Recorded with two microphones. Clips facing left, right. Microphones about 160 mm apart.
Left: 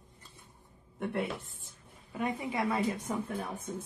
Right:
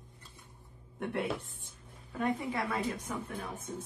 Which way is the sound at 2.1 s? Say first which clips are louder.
Even; 20° left (ahead or behind).